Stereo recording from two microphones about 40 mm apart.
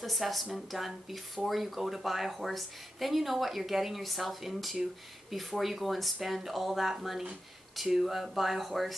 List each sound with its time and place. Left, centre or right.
0.0 s speech: centre